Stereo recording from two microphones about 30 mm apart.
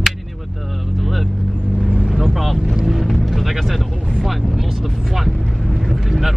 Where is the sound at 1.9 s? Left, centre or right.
Right.